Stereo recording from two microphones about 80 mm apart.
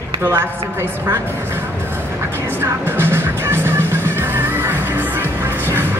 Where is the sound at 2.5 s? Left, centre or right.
Right.